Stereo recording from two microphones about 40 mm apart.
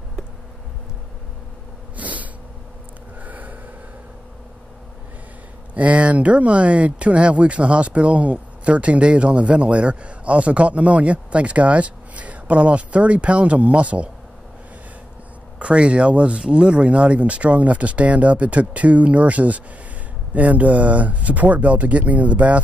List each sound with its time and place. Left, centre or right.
2.0 s sneeze: right
3.2 s a sound: right
5.8 s speech: right
15.6 s speech: right